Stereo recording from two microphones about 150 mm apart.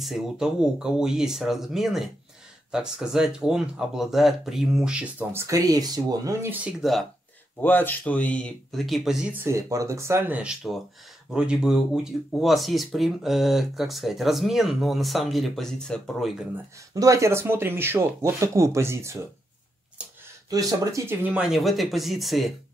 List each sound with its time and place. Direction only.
0.0 s speech: 5° right (ahead or behind); by 6.5 s 25° right (ahead or behind)
6.5 s speech: 5° right (ahead or behind)
7.6 s speech: 15° left (ahead or behind)
16.9 s speech: 20° right (ahead or behind)
20.4 s speech: 25° right (ahead or behind); by 22.5 s centre (ahead or behind)